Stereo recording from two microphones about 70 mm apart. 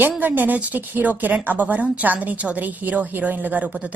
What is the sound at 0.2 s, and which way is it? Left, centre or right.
A woman's voice, right.